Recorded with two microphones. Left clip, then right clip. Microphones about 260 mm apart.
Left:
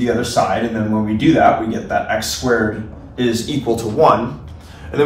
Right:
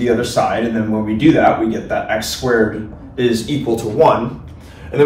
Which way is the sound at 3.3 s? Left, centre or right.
Centre.